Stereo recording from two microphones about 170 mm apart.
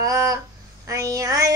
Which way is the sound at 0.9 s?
20° right (ahead or behind).